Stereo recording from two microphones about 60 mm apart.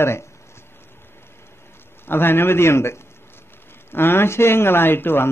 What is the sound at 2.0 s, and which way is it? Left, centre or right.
A man's voice, left.